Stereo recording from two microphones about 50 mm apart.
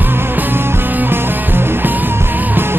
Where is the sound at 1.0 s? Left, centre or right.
Right.